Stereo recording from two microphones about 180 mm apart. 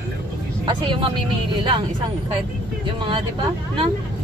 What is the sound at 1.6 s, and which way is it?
Speech, 25° right (ahead or behind).